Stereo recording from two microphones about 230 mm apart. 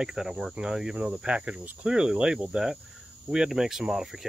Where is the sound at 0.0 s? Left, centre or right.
Centre.